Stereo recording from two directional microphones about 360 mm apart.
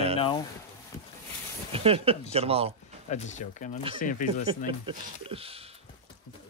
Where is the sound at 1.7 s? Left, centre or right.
Centre.